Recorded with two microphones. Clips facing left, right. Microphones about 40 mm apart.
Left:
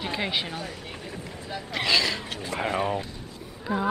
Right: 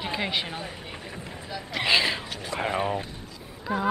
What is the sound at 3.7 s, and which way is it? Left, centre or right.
Speech, centre.